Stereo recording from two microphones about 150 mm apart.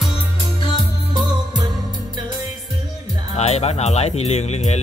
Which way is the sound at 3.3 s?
45° left (ahead or behind).